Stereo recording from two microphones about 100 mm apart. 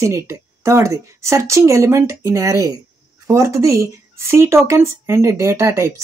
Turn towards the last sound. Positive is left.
turn(degrees=-30)  # may be behind; listen again after turning